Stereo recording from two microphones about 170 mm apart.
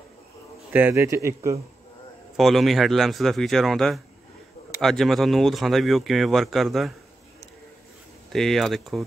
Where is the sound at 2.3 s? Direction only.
Centre (ahead or behind).